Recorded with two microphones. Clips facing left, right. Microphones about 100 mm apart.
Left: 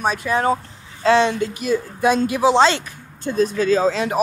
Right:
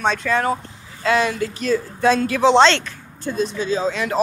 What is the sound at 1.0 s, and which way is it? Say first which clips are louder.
Speech: left 3 dB; 30° left (ahead or behind).